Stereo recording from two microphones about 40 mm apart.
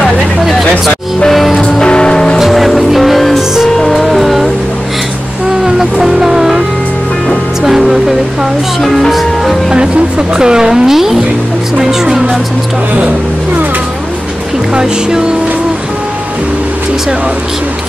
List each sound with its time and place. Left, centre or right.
0.0 s hubbub: centre
1.3 s music: centre
1.6 s music: centre
2.3 s music: centre
4.0 s music: centre
5.8 s vehicle: centre
7.6 s speech: centre
9.7 s speech: right
14.7 s speech: centre